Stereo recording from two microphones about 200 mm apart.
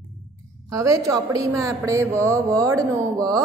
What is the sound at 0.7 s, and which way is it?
A woman's voice, 15° right (ahead or behind).